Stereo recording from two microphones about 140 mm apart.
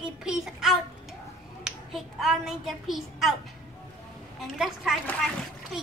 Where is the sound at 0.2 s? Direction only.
5° right (ahead or behind).